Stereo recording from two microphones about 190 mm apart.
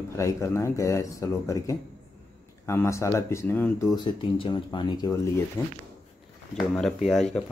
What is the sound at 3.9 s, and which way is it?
Speech, 25° left (ahead or behind).